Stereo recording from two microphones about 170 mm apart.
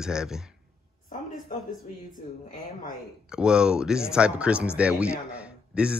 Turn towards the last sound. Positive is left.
turn(degrees=-5)  # may be behind; listen again after turning